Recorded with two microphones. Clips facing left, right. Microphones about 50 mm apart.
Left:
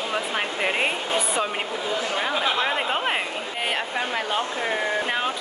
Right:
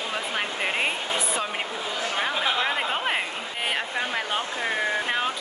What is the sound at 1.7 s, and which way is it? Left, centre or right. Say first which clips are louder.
Speech: left 3 dB; left.